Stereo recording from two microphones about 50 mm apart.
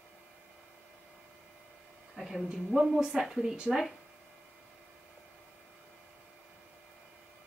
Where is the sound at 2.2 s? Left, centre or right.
Centre.